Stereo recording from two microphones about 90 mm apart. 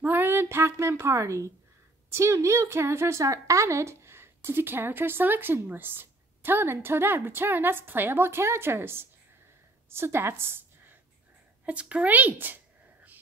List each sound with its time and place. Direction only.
0.0 s a woman's voice: 25° right (ahead or behind)
11.6 s speech: 15° right (ahead or behind)